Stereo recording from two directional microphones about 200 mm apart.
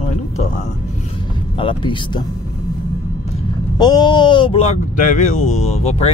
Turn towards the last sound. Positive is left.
turn(degrees=30)  # may be behind; listen again after turning